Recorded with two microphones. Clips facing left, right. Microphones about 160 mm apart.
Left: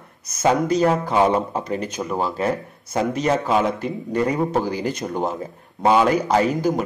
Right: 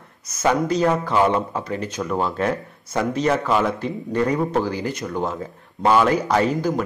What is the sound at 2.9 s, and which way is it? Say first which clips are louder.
Speech: even; 20° left (ahead or behind).